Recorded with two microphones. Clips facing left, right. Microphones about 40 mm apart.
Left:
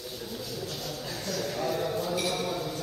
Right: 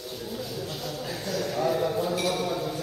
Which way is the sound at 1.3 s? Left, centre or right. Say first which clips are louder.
Right 4 dB; centre.